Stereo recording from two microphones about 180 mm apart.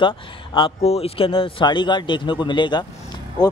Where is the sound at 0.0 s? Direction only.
30° left (ahead or behind).